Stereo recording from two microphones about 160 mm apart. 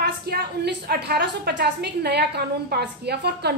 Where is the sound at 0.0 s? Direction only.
85° right.